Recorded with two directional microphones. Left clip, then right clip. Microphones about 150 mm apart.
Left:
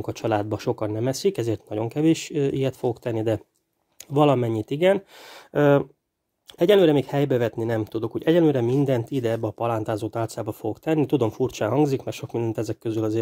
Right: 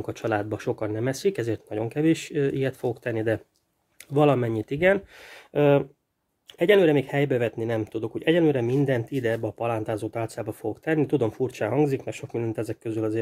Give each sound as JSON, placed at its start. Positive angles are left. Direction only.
{"t": 0.0, "sound": "speech", "side_deg": 30}
{"t": 12.3, "sound": "speech", "side_deg": 30}